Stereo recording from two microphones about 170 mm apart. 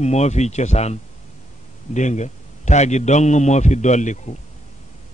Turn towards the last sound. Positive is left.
turn(degrees=45)  # may be behind; listen again after turning